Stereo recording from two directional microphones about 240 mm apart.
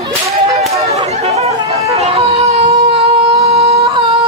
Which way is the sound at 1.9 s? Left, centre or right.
Right.